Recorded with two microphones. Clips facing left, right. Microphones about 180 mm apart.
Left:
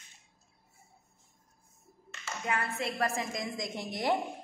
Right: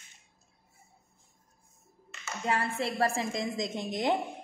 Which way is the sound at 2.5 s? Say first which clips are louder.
Right 3 dB; 30° right (ahead or behind).